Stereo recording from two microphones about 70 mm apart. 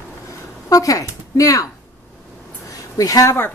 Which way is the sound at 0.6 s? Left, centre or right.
Left.